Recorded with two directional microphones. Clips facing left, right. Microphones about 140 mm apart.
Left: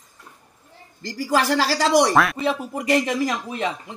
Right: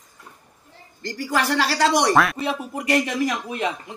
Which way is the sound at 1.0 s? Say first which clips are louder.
Left 2 dB; 35° left (ahead or behind).